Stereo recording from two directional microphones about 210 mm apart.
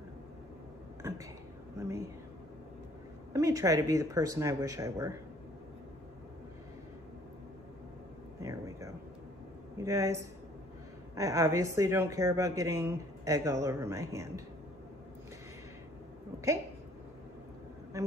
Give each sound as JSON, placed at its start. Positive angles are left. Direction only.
{"t": 1.0, "sound": "speech", "side_deg": -15}
{"t": 3.3, "sound": "speech", "side_deg": -15}
{"t": 8.4, "sound": "a sound", "side_deg": -15}
{"t": 9.8, "sound": "speech", "side_deg": -15}
{"t": 17.9, "sound": "speech", "side_deg": -15}